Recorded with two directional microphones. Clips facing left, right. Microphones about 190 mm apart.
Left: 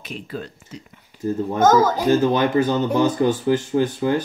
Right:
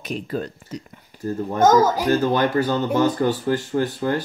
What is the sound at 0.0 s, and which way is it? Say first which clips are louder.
Speech: right 5 dB; 45° right (ahead or behind).